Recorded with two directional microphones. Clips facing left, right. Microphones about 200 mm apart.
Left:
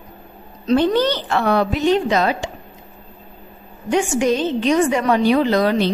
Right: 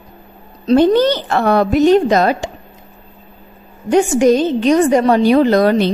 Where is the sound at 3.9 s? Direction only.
40° right (ahead or behind).